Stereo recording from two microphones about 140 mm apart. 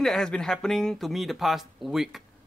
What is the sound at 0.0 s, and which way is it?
Speech, 5° left (ahead or behind).